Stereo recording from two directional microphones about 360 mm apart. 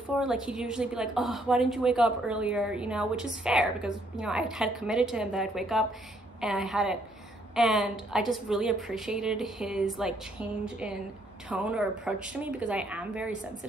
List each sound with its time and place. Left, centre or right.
0.2 s a woman's voice: centre